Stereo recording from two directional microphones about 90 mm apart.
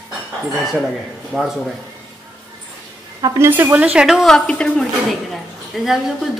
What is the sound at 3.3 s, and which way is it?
Speech, 25° right (ahead or behind).